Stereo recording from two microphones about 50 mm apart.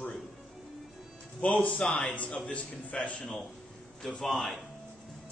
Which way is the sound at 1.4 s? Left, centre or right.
Left.